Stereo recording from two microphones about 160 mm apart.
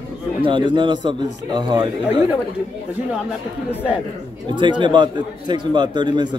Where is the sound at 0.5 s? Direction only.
30° right (ahead or behind).